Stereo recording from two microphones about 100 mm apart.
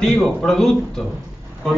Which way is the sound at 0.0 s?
5° left (ahead or behind).